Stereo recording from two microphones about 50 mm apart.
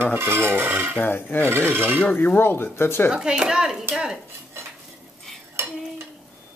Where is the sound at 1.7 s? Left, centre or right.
Right.